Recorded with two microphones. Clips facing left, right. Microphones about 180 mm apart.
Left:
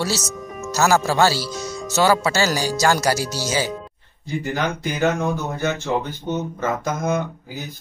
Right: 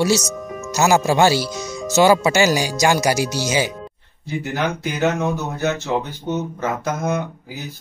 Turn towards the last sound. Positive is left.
turn(degrees=-10)  # may be behind; listen again after turning